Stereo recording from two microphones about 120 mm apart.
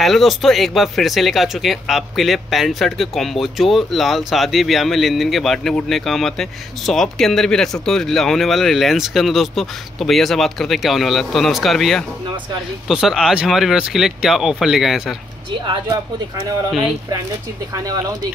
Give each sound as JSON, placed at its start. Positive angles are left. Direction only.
{"t": 0.0, "sound": "speech", "side_deg": 0}
{"t": 15.6, "sound": "speech", "side_deg": -40}